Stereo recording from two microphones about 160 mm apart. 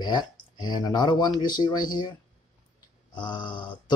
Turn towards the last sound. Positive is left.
turn(degrees=30)  # may be behind; listen again after turning